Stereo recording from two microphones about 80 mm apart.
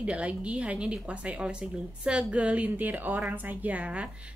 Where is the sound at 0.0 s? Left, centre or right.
Centre.